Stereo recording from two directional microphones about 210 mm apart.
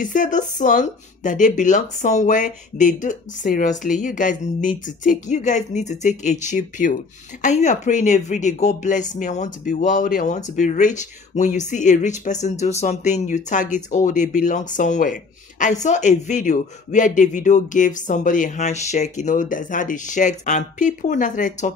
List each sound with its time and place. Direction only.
0.0 s speech: 35° left (ahead or behind)